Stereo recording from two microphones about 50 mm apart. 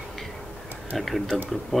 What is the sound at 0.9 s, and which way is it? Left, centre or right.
Tick-tock, centre.